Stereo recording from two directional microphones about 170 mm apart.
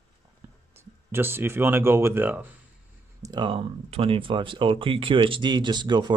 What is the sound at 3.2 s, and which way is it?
Speech, 25° right (ahead or behind).